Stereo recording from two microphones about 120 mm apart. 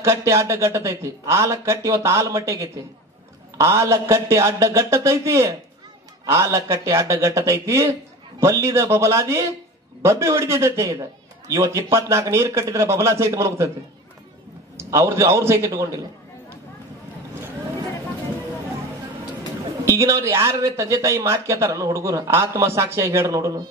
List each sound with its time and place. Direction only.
0.0 s speech: 25° right (ahead or behind)
14.8 s speech: 25° right (ahead or behind)
19.8 s speech: 25° right (ahead or behind)